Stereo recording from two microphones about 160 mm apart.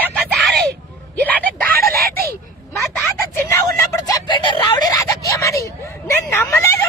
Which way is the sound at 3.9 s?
25° left (ahead or behind).